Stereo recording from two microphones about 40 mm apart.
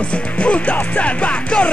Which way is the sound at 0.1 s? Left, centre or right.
Left.